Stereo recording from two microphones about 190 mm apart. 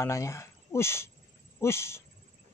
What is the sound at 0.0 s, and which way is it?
Speech, 15° left (ahead or behind).